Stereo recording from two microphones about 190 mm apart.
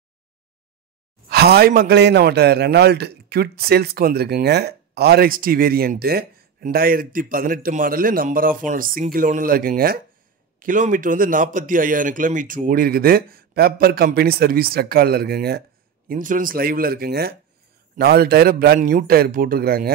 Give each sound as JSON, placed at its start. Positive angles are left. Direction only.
{"t": 1.3, "sound": "a man's voice", "side_deg": -55}
{"t": 16.1, "sound": "a man's voice", "side_deg": -45}